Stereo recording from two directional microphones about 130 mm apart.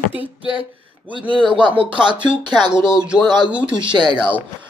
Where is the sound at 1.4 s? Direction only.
40° right (ahead or behind).